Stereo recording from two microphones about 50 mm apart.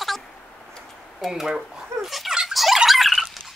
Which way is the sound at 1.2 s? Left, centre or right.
Centre.